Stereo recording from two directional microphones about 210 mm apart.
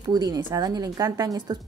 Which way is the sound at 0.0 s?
20° right (ahead or behind).